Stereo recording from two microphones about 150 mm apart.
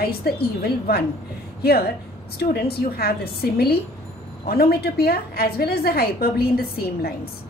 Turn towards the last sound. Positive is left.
turn(degrees=90)